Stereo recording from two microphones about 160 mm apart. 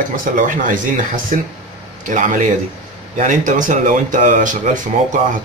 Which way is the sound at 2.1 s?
55° right (ahead or behind).